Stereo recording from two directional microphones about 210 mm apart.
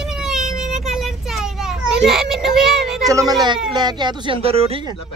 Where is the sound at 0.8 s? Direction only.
Centre (ahead or behind).